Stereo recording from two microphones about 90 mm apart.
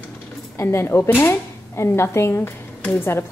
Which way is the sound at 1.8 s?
30° left (ahead or behind).